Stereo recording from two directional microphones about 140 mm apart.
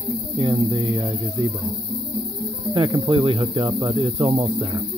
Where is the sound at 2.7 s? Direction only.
30° right (ahead or behind).